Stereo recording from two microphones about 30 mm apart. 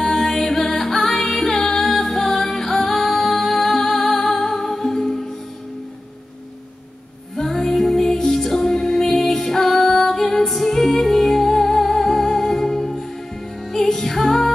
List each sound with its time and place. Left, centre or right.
0.0 s music: centre
7.4 s music: centre